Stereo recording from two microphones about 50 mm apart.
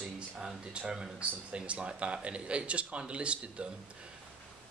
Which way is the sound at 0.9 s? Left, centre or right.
Centre.